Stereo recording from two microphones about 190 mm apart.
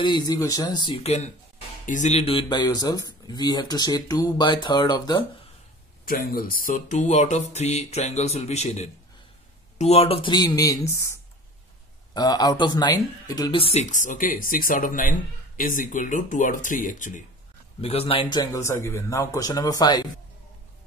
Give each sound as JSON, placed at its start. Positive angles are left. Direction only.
{"t": 0.0, "sound": "speech", "side_deg": 20}
{"t": 6.0, "sound": "speech", "side_deg": 50}
{"t": 17.7, "sound": "speech", "side_deg": 30}